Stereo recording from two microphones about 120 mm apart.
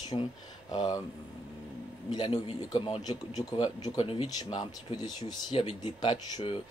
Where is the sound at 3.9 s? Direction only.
50° left (ahead or behind).